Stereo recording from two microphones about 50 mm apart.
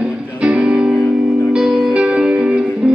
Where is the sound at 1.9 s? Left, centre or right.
Right.